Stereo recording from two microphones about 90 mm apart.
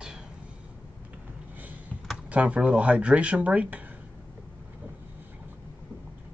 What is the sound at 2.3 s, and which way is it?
Speech, 15° right (ahead or behind).